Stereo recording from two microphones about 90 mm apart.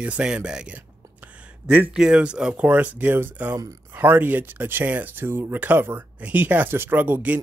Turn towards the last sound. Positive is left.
turn(degrees=-20)  # may be behind; listen again after turning